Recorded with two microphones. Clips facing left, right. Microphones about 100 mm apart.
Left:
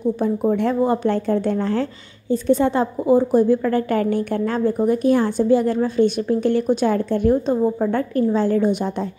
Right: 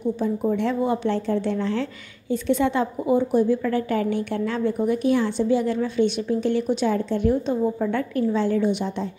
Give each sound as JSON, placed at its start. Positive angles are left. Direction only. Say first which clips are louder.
{"t": 0.2, "sound": "a woman's voice", "louder": "left 3 dB", "side_deg": 50}
{"t": 3.4, "sound": "a woman's voice", "louder": "left 4 dB", "side_deg": 50}
{"t": 7.4, "sound": "a woman's voice", "louder": "left 4 dB", "side_deg": 35}